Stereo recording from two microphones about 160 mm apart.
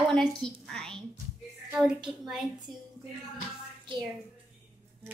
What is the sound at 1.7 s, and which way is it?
Speech, 5° right (ahead or behind).